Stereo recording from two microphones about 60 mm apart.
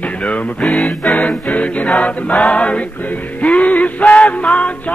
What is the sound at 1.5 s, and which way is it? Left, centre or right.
Music, left.